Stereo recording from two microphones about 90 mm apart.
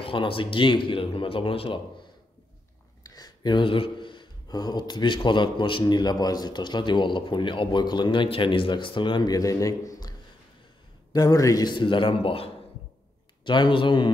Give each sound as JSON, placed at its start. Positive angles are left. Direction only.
{"t": 0.0, "sound": "speech", "side_deg": 80}
{"t": 3.0, "sound": "a sound", "side_deg": 45}
{"t": 4.5, "sound": "a man's voice", "side_deg": 45}
{"t": 9.3, "sound": "a man's voice", "side_deg": 40}
{"t": 11.1, "sound": "a man's voice", "side_deg": 40}
{"t": 11.7, "sound": "speech", "side_deg": 65}
{"t": 13.4, "sound": "a man's voice", "side_deg": 60}